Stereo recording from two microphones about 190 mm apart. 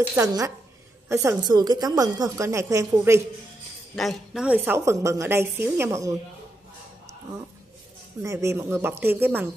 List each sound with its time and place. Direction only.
0.1 s a woman's voice: 15° right (ahead or behind)
3.9 s a woman's voice: centre (ahead or behind); by 6.1 s 15° right (ahead or behind)
8.2 s a woman's voice: 15° right (ahead or behind)